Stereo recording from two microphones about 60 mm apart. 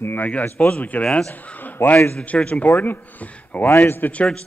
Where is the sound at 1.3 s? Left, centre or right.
Left.